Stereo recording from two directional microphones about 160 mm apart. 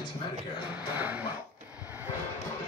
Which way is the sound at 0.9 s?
10° right (ahead or behind).